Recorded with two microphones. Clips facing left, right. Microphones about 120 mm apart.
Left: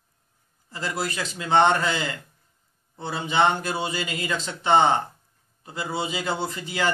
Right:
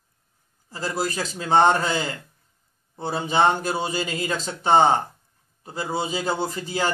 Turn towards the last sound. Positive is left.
turn(degrees=-35)  # may be behind; listen again after turning